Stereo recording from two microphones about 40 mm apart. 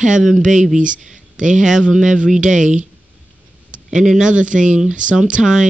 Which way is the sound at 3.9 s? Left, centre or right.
Centre.